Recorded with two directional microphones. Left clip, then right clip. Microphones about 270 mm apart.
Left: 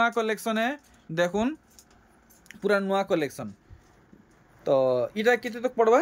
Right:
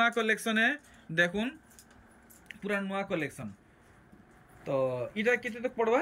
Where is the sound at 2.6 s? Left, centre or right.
Centre.